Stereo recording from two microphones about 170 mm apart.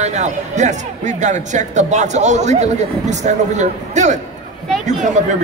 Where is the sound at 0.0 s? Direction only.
45° right (ahead or behind).